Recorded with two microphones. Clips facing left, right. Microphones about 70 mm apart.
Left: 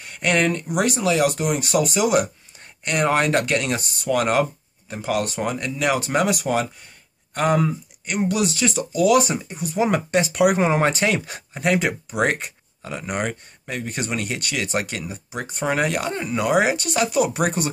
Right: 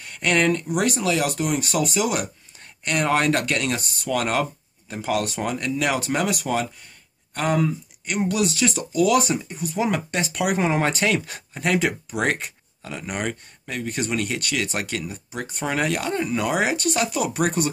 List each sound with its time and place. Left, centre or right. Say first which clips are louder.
0.2 s speech: even; centre
8.1 s speech: left 1 dB; centre
8.9 s speech: left 2 dB; centre
10.2 s speech: left 3 dB; centre